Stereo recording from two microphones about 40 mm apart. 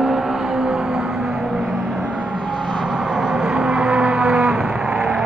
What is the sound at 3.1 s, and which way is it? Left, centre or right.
Vehicle, centre.